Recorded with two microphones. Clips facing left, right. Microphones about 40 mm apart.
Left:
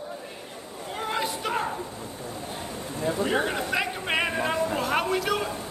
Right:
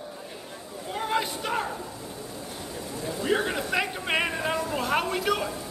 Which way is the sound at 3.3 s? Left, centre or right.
Left.